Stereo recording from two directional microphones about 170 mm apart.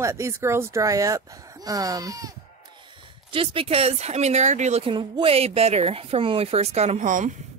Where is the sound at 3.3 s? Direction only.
30° right (ahead or behind).